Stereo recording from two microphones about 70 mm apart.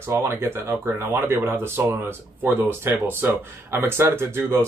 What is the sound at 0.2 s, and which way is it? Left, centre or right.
Speech, right.